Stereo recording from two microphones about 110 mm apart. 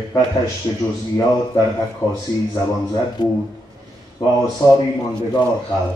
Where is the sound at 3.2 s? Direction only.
40° left (ahead or behind).